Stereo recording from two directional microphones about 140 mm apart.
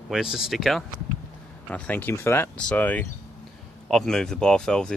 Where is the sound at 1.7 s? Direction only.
10° left (ahead or behind).